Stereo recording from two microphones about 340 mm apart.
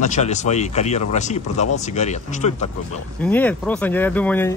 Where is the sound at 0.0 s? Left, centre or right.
Left.